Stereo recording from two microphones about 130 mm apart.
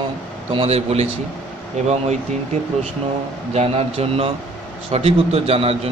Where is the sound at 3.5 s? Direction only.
50° right (ahead or behind).